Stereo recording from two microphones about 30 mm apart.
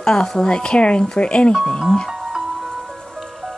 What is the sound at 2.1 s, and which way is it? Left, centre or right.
Music, centre.